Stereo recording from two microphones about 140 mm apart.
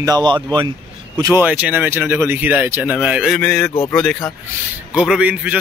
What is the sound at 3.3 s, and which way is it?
Speech, 5° left (ahead or behind).